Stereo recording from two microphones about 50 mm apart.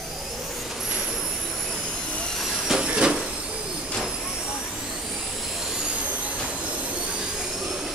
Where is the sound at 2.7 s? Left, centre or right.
Centre.